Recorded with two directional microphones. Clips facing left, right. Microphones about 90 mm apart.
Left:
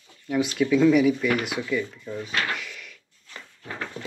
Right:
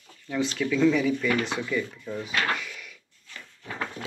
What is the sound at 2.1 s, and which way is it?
Drawer open or close, centre (ahead or behind).